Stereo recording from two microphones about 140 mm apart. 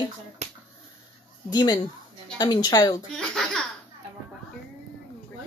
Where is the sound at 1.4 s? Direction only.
30° left (ahead or behind).